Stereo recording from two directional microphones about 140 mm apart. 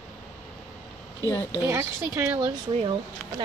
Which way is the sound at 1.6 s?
20° right (ahead or behind).